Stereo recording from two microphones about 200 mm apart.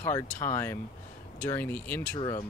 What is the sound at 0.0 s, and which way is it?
Speech, 15° left (ahead or behind).